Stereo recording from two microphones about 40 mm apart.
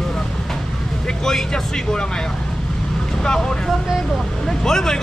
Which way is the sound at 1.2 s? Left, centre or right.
Centre.